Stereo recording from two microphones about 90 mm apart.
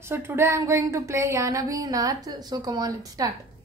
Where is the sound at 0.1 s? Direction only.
25° right (ahead or behind); by 3.3 s 45° right (ahead or behind).